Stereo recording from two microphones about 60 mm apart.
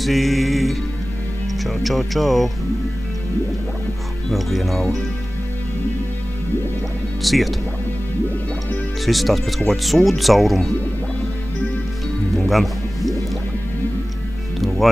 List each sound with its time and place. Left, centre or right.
0.0 s music: centre
1.6 s speech: centre
4.3 s speech: centre
7.2 s speech: centre
9.0 s speech: centre
12.4 s music: centre
14.6 s music: centre